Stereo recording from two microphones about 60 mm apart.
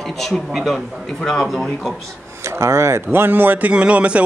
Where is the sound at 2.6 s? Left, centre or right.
Right.